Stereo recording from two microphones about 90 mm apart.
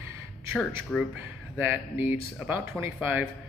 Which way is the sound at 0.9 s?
10° left (ahead or behind).